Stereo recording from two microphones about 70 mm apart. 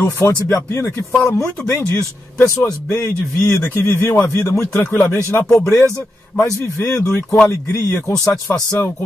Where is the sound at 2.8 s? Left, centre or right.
Left.